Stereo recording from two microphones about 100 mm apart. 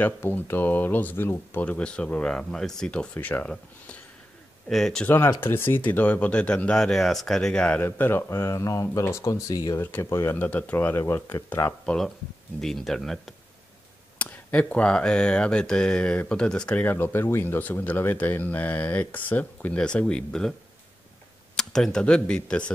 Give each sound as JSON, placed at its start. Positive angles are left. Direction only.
{"t": 0.0, "sound": "speech", "side_deg": 20}
{"t": 4.6, "sound": "speech", "side_deg": 5}
{"t": 5.0, "sound": "speech", "side_deg": 25}
{"t": 9.8, "sound": "speech", "side_deg": 25}
{"t": 10.5, "sound": "speech", "side_deg": 15}
{"t": 11.8, "sound": "speech", "side_deg": 10}
{"t": 14.1, "sound": "speech", "side_deg": 15}
{"t": 21.5, "sound": "speech", "side_deg": 5}